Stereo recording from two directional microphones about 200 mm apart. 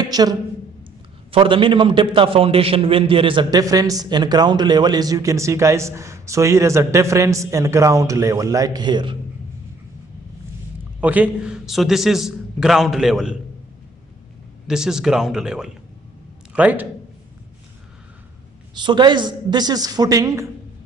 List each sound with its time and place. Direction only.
0.1 s a woman's voice: 20° right (ahead or behind)
11.0 s a man's voice: 5° right (ahead or behind)
14.7 s a man's voice: 5° right (ahead or behind)
18.8 s a man's voice: 25° right (ahead or behind)